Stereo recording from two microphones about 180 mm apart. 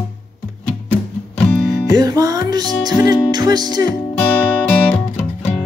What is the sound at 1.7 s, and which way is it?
Music, 20° right (ahead or behind).